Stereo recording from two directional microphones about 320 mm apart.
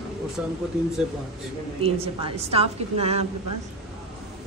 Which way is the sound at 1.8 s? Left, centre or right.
Centre.